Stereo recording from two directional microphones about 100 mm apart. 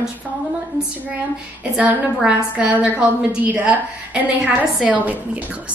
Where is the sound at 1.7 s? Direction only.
10° right (ahead or behind).